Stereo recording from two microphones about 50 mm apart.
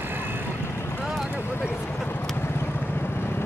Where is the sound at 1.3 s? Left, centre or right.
Left.